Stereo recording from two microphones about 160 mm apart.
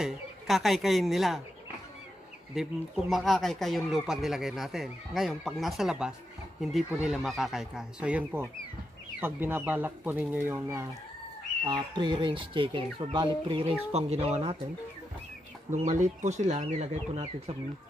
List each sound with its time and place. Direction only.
0.0 s speech: centre (ahead or behind)
2.5 s speech: centre (ahead or behind)
11.6 s speech: 30° right (ahead or behind)
15.7 s speech: 50° right (ahead or behind)